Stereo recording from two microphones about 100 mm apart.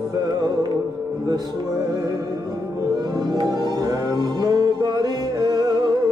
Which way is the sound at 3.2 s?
45° right (ahead or behind).